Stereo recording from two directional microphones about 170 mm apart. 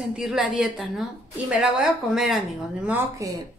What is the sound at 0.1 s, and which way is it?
Speech, 5° right (ahead or behind).